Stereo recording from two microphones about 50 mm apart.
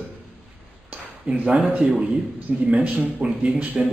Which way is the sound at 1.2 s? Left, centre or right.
Centre.